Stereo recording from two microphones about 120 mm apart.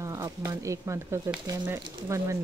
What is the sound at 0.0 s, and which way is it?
Speech, 30° right (ahead or behind).